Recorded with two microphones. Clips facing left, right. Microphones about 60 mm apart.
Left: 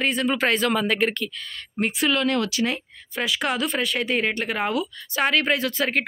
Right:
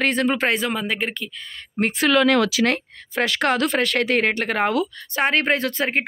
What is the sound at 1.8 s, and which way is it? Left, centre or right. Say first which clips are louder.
Speech: right 5 dB; right.